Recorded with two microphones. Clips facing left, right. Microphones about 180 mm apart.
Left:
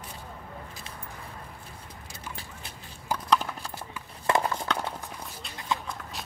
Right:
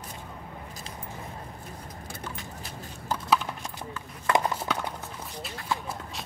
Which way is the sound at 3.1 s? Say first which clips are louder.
Even; 10° left (ahead or behind).